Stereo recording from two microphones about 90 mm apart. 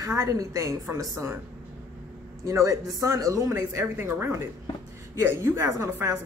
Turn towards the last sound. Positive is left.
turn(degrees=-30)  # may be behind; listen again after turning